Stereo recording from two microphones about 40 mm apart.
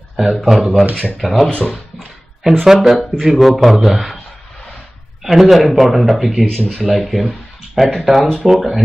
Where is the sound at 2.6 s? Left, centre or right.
Centre.